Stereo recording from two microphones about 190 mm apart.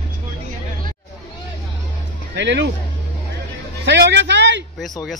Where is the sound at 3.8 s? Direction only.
65° right (ahead or behind).